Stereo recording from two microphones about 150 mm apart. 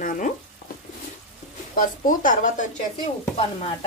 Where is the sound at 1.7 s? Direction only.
65° left (ahead or behind).